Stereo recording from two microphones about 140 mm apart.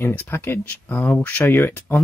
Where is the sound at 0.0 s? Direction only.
15° left (ahead or behind).